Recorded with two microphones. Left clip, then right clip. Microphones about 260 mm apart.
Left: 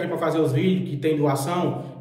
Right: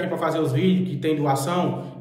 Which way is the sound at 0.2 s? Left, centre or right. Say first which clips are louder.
Left 2 dB; centre.